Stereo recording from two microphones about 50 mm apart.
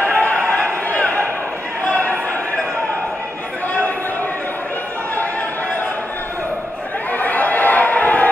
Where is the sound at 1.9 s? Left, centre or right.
Left.